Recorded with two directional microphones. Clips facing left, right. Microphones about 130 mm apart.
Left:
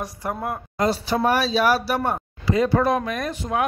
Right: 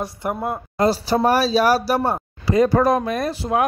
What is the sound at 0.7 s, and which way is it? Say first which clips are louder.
A man's voice: right 4 dB; 35° right (ahead or behind).